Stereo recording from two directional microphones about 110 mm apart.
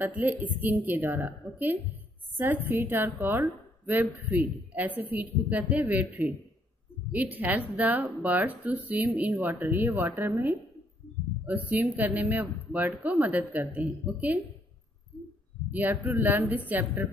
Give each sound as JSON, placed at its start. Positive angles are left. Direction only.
{"t": 0.0, "sound": "a woman's voice", "side_deg": -15}
{"t": 11.4, "sound": "a man's voice", "side_deg": -15}
{"t": 15.7, "sound": "a man's voice", "side_deg": -15}